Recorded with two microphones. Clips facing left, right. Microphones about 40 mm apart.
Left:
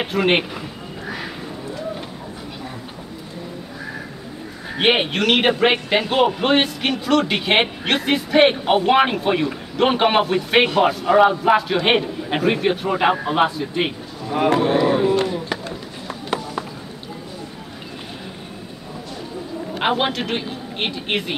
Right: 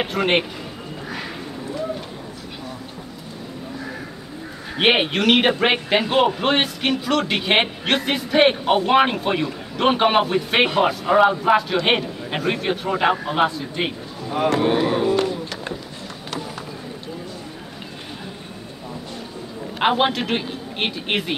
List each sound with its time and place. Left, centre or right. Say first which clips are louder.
0.0 s a man's voice: left 1 dB; centre
4.7 s a man's voice: even; centre
15.1 s a sound: left 1 dB; left
19.7 s a man's voice: right 2 dB; centre